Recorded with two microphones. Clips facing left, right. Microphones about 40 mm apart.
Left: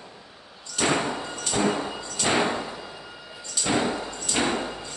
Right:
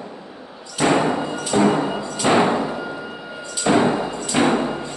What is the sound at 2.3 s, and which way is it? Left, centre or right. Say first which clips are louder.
Thump: right 7 dB; right.